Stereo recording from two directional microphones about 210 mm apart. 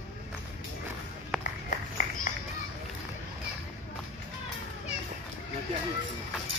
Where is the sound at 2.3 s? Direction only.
40° left (ahead or behind).